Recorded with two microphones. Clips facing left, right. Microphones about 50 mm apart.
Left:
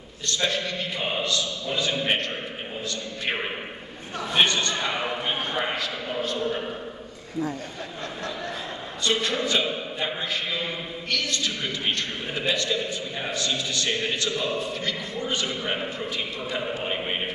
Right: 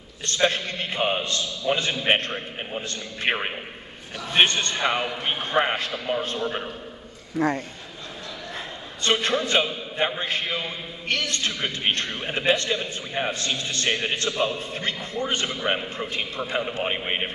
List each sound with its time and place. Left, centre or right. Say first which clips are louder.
0.3 s a man's voice: right 3 dB; right
7.3 s a man's voice: right 6 dB; right
9.0 s a man's voice: right 2 dB; right